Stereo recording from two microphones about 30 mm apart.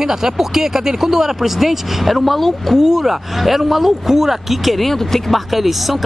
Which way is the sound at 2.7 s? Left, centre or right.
Centre.